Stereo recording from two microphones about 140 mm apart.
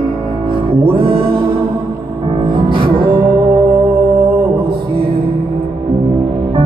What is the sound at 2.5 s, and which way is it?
Music, 35° right (ahead or behind).